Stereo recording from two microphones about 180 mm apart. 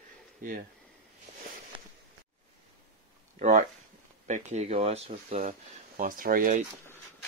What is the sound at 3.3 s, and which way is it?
Speech, 40° right (ahead or behind).